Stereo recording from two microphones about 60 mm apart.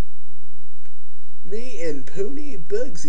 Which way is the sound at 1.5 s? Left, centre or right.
Centre.